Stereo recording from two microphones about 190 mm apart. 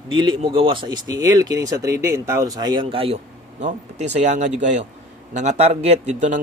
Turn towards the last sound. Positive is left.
turn(degrees=-40)  # may be behind; listen again after turning